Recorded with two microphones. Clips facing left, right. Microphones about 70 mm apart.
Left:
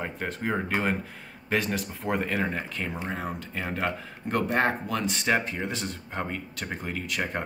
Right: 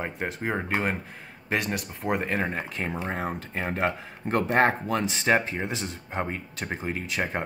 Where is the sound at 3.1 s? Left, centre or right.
Right.